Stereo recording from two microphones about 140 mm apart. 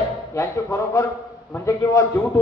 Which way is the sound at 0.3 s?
20° left (ahead or behind).